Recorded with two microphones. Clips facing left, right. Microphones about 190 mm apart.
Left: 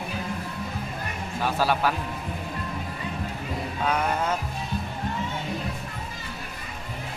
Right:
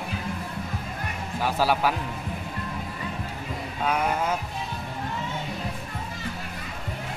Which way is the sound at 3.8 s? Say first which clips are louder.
Right 1 dB; 5° right (ahead or behind).